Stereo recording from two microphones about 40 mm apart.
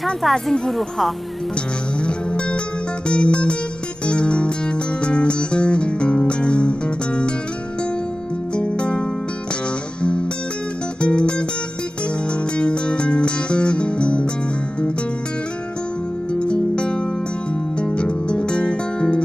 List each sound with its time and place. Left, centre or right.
0.0 s a woman's voice: centre
2.0 s music: left
8.5 s music: left
11.0 s music: left
12.5 s music: left
16.3 s music: left